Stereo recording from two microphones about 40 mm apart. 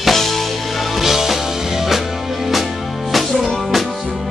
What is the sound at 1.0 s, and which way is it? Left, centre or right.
Music, centre.